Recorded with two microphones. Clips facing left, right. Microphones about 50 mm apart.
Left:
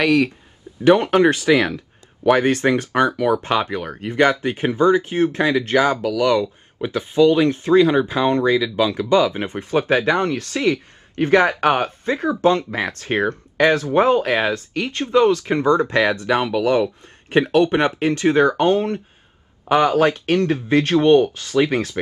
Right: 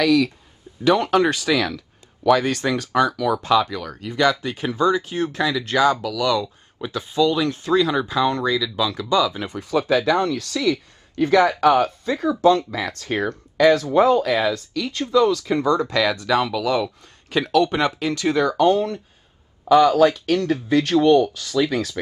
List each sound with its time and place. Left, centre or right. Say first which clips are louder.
0.0 s speech: left 1 dB; left